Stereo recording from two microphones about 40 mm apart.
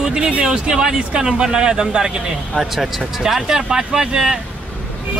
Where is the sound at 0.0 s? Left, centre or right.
Centre.